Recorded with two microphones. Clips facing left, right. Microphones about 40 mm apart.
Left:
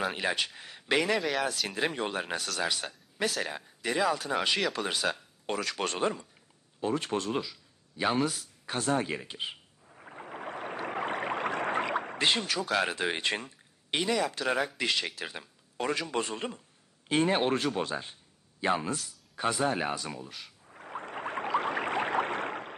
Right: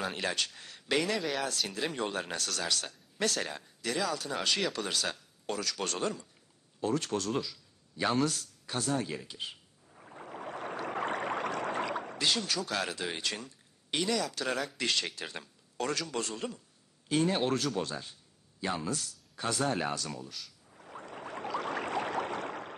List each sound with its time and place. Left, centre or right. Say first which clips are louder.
0.0 s speech: left 3 dB; centre
1.2 s speech: left 3 dB; centre
1.7 s speech: left 3 dB; left
3.8 s speech: left 4 dB; left
8.6 s a sound: left 4 dB; left
12.7 s speech: left 5 dB; left
14.7 s speech: left 2 dB; centre; by 20.7 s left
20.7 s a sound: left 6 dB; left